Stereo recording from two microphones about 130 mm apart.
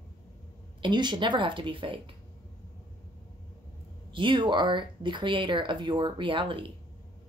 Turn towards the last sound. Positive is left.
turn(degrees=-40)  # may be behind; listen again after turning